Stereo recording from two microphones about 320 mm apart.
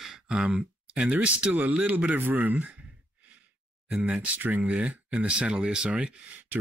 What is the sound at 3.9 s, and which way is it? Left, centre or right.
Speech, centre.